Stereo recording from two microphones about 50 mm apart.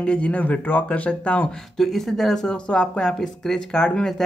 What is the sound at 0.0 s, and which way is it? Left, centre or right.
Speech, left.